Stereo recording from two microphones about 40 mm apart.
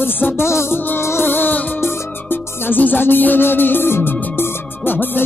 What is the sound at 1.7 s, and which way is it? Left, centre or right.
Music, left.